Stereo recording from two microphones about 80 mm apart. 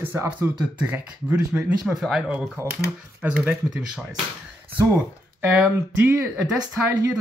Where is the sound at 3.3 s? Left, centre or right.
Right.